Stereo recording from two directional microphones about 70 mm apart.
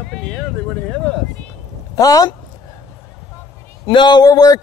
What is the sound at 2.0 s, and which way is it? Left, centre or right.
Speech, left.